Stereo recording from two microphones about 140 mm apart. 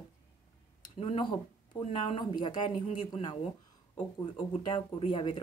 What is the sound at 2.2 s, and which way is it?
Speech, 35° left (ahead or behind).